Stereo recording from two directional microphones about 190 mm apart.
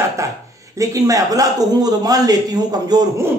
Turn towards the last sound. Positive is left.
turn(degrees=-20)  # may be behind; listen again after turning